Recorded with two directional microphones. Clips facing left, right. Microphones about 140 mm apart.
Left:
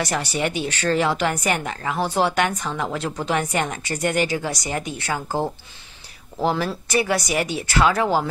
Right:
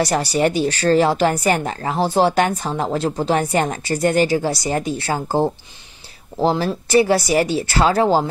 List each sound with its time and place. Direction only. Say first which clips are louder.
0.0 s speech: right 6 dB; 35° right (ahead or behind)
6.9 s speech: right 8 dB; 30° right (ahead or behind)